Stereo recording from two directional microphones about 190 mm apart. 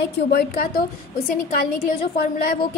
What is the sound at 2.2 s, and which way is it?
Speech, 50° left (ahead or behind).